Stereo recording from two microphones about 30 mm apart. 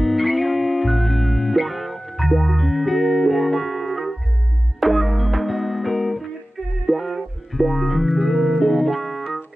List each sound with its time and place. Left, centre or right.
0.0 s music: centre